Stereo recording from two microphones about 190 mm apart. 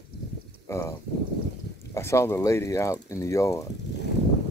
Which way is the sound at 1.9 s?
15° left (ahead or behind).